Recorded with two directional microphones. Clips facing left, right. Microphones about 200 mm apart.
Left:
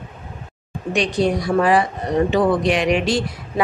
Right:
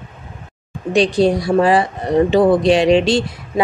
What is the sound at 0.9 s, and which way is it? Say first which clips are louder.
A woman's voice: right 5 dB; 30° right (ahead or behind).